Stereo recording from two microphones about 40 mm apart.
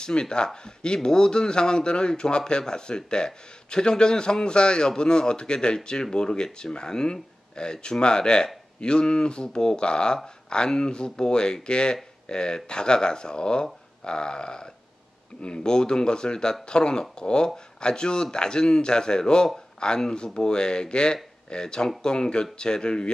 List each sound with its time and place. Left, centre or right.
0.0 s speech: left